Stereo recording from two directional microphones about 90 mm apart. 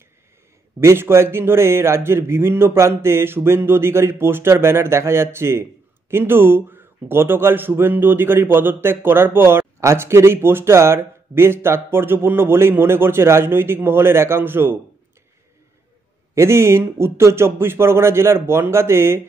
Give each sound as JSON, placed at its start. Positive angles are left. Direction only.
{"t": 0.7, "sound": "a man's voice", "side_deg": -30}
{"t": 16.3, "sound": "a man's voice", "side_deg": -30}